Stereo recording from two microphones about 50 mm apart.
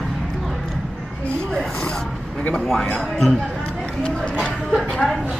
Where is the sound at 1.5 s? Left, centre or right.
Centre.